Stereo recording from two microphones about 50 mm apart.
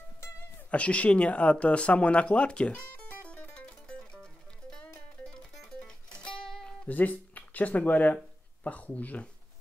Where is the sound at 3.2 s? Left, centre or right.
Left.